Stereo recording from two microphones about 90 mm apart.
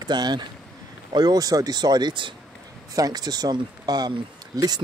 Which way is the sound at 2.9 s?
45° right (ahead or behind).